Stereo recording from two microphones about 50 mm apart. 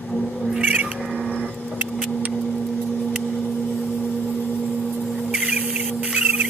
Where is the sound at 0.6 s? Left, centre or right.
Right.